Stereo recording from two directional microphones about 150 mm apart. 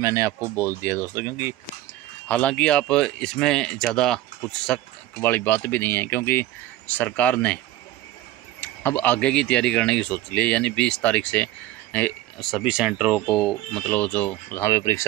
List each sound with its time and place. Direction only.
0.0 s speech: 20° right (ahead or behind)
2.2 s speech: 10° left (ahead or behind)
12.4 s speech: centre (ahead or behind); by 15.0 s 20° left (ahead or behind)